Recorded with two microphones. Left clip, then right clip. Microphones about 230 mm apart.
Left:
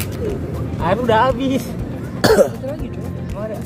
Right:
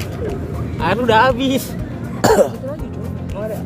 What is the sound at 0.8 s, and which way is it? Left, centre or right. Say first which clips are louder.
Speech: right 2 dB; right.